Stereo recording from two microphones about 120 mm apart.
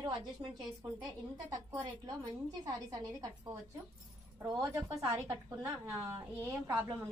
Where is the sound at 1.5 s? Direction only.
30° right (ahead or behind).